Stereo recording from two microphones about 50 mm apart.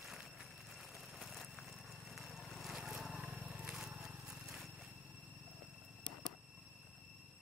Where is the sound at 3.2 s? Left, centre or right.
Right.